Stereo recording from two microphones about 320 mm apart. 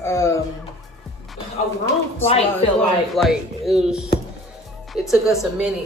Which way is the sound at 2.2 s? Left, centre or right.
Centre.